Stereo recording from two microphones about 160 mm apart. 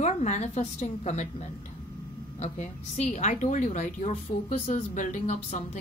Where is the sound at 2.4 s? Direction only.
45° left (ahead or behind).